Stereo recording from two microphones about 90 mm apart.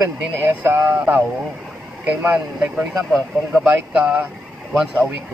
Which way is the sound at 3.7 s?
15° right (ahead or behind).